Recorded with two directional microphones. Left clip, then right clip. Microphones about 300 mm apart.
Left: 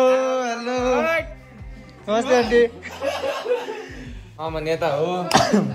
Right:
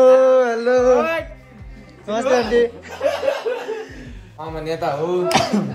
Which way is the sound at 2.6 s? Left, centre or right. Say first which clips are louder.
Right 3 dB; left.